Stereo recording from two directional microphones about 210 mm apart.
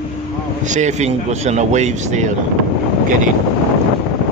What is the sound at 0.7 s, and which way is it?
Speech, 35° right (ahead or behind).